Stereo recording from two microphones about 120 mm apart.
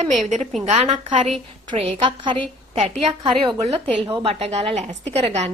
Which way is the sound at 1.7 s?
50° right (ahead or behind).